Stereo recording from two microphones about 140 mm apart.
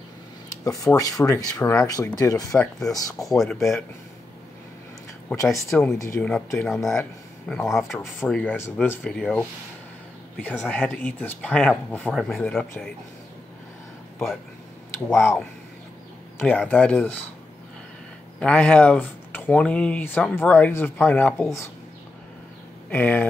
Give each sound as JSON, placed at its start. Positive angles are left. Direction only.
{"t": 0.7, "sound": "speech", "side_deg": 25}
{"t": 3.3, "sound": "speech", "side_deg": 0}
{"t": 5.5, "sound": "speech", "side_deg": 0}
{"t": 5.9, "sound": "speech", "side_deg": 20}
{"t": 6.7, "sound": "speech", "side_deg": 0}
{"t": 8.4, "sound": "speech", "side_deg": 10}
{"t": 10.4, "sound": "speech", "side_deg": 10}
{"t": 14.1, "sound": "speech", "side_deg": 5}
{"t": 18.4, "sound": "speech", "side_deg": 10}
{"t": 22.8, "sound": "speech", "side_deg": 15}